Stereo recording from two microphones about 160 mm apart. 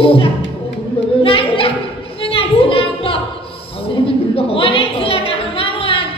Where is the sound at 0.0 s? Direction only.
35° left (ahead or behind).